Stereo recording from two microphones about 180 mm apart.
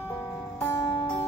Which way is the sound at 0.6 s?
15° left (ahead or behind).